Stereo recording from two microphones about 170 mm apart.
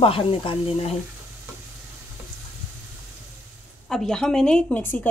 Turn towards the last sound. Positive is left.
turn(degrees=5)  # may be behind; listen again after turning